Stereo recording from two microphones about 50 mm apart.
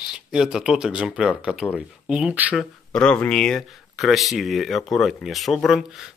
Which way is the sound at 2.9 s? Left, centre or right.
Centre.